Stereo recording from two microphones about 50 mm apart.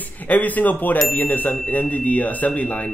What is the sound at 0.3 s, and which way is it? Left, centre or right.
Speech, left.